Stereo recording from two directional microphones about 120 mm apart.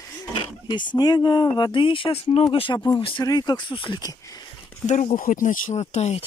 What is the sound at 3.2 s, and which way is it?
Speech, 35° left (ahead or behind).